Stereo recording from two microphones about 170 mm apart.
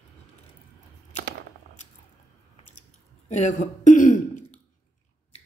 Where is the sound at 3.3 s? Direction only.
45° left (ahead or behind).